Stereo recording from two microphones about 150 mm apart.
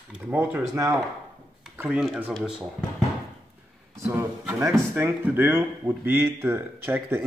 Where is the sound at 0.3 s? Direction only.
15° right (ahead or behind).